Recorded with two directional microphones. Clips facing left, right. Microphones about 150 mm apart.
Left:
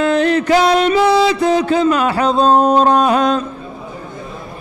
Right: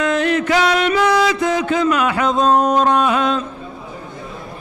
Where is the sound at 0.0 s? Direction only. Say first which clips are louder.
Left 3 dB; 35° left (ahead or behind).